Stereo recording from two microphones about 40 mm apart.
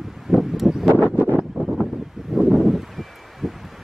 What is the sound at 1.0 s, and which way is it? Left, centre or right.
Wind noise, right.